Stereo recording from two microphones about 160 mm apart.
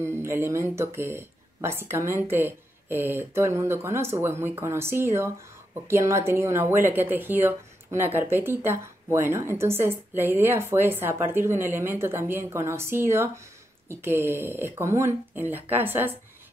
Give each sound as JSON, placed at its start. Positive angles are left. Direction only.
{"t": 0.0, "sound": "speech", "side_deg": -15}